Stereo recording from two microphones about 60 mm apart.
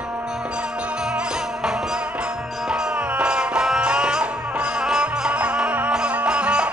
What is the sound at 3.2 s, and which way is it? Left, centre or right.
Music, centre.